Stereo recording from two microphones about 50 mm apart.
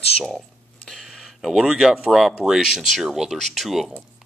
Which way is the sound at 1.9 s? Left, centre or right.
Centre.